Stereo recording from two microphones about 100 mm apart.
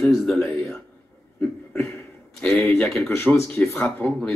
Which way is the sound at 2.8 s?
5° left (ahead or behind).